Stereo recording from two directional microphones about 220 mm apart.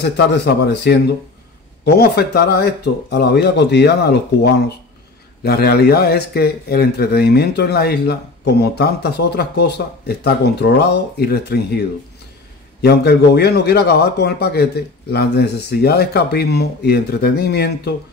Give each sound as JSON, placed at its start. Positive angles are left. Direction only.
{"t": 0.0, "sound": "speech", "side_deg": 50}
{"t": 12.8, "sound": "speech", "side_deg": 45}